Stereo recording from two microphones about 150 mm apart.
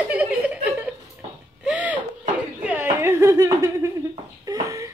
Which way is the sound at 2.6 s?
15° right (ahead or behind).